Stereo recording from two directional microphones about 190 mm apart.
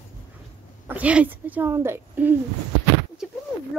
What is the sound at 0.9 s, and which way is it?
Speech, 5° right (ahead or behind).